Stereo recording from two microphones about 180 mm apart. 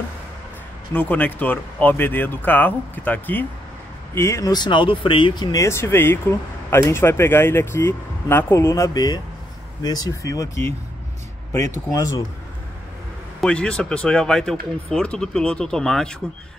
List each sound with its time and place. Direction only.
0.9 s speech: 10° left (ahead or behind)
11.9 s speech: 20° left (ahead or behind)
13.4 s speech: 5° left (ahead or behind)